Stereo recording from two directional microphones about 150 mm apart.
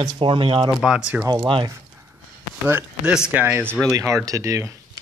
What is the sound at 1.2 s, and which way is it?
Speech, 30° right (ahead or behind).